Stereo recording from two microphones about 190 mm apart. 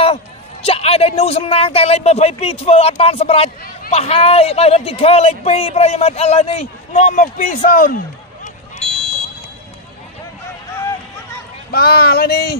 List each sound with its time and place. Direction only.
0.0 s a man's voice: 30° left (ahead or behind); by 8.0 s 45° left (ahead or behind)
11.7 s speech: 55° left (ahead or behind)